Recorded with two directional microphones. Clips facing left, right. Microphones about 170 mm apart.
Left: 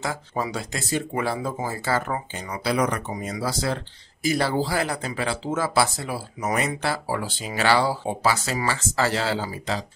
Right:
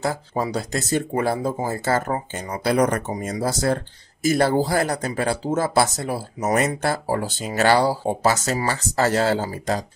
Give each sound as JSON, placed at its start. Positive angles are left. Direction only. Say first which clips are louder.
{"t": 0.0, "sound": "speech", "louder": "right 4 dB", "side_deg": -35}